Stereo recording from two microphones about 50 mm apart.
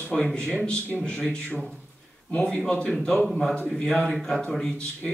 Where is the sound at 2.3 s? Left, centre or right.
Centre.